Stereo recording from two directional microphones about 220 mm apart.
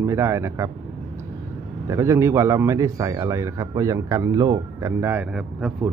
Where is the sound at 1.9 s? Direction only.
15° right (ahead or behind).